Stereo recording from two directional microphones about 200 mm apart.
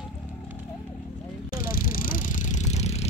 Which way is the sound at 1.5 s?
45° left (ahead or behind).